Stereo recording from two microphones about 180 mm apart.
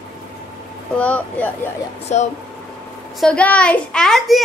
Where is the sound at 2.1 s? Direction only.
40° left (ahead or behind).